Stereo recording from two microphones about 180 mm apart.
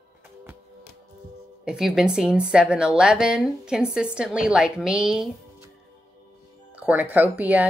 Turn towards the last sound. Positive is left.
turn(degrees=-10)  # may be behind; listen again after turning